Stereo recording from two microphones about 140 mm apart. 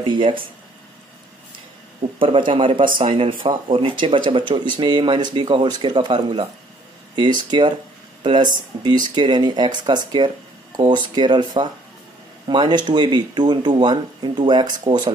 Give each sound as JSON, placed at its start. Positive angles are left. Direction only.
{"t": 0.0, "sound": "speech", "side_deg": -35}
{"t": 2.1, "sound": "speech", "side_deg": -40}